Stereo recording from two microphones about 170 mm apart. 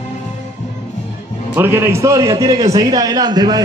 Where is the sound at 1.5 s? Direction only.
15° right (ahead or behind).